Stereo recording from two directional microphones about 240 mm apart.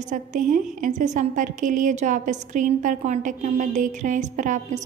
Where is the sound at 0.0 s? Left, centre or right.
Right.